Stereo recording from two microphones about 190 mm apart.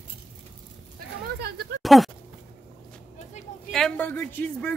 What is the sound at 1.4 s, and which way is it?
Speech, 60° right (ahead or behind).